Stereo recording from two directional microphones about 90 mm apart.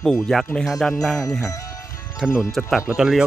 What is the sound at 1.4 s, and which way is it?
Music, 35° left (ahead or behind).